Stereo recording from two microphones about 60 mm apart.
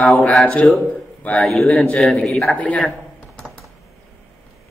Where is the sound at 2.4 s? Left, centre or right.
Left.